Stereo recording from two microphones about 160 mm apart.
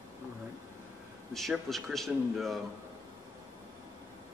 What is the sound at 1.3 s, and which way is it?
Speech, centre (ahead or behind).